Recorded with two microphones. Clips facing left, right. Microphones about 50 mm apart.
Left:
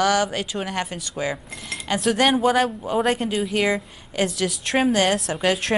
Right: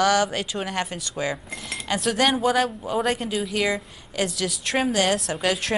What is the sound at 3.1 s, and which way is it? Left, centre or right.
Cutlery, centre.